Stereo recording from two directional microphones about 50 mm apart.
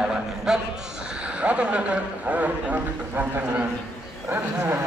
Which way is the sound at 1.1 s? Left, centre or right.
Right.